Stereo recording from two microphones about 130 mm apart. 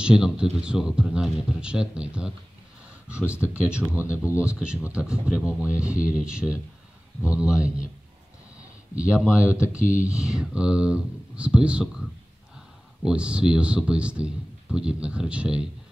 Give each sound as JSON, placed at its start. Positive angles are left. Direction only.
{"t": 0.0, "sound": "a man's voice", "side_deg": -5}
{"t": 3.2, "sound": "speech", "side_deg": 15}
{"t": 3.7, "sound": "a man's voice", "side_deg": -10}
{"t": 8.9, "sound": "a man's voice", "side_deg": -10}
{"t": 13.0, "sound": "a man's voice", "side_deg": -10}